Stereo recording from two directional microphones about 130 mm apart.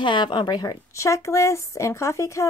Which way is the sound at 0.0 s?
40° left (ahead or behind).